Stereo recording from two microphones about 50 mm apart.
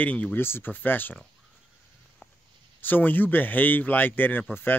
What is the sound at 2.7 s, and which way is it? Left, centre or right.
Speech, left.